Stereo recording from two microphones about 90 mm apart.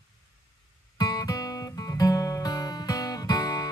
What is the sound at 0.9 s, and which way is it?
Music, 45° left (ahead or behind).